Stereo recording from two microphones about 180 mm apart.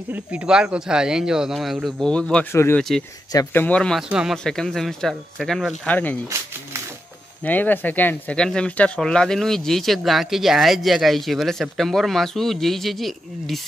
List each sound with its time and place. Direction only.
0.1 s speech: 5° right (ahead or behind); by 3.6 s 20° left (ahead or behind)
3.6 s speech: 5° left (ahead or behind)
7.4 s speech: 10° left (ahead or behind)